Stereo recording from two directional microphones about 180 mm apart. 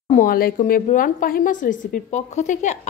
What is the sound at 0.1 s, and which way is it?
A woman's voice, 50° left (ahead or behind).